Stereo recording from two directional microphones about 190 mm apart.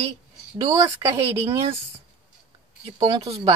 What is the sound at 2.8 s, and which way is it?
Speech, 20° right (ahead or behind).